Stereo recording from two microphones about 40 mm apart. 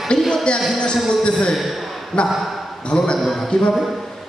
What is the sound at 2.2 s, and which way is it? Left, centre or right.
Speech, left.